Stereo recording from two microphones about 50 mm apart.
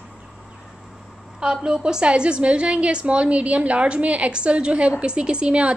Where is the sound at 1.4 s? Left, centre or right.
Centre.